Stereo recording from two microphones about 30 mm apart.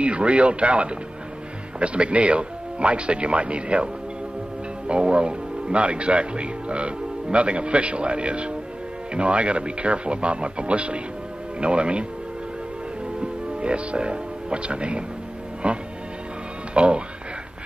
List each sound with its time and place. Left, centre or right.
0.0 s a man's voice: right
13.2 s a man's voice: right